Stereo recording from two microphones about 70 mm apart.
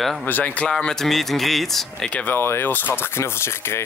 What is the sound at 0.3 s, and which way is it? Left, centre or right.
Speech, left.